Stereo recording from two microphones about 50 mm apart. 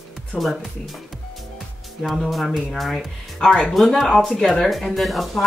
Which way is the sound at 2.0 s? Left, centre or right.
Centre.